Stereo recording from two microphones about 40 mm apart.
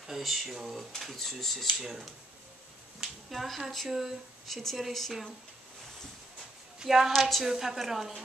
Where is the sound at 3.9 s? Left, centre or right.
Centre.